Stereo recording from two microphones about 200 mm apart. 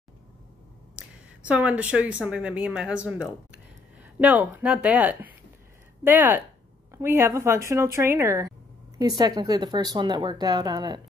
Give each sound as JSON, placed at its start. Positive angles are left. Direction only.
{"t": 0.9, "sound": "a woman's voice", "side_deg": -5}